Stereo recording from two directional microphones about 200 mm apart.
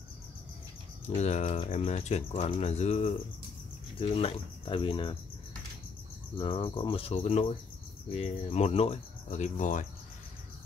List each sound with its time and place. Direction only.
1.0 s speech: 35° left (ahead or behind)
4.0 s cricket: 30° left (ahead or behind)
6.3 s cricket: 25° left (ahead or behind)
8.1 s speech: 30° left (ahead or behind)